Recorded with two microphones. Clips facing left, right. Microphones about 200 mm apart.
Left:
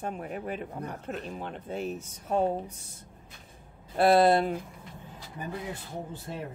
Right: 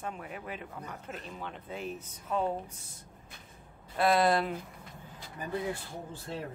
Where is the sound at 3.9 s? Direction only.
30° left (ahead or behind).